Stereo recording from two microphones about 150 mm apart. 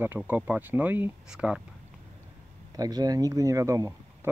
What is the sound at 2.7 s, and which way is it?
Speech, 25° right (ahead or behind).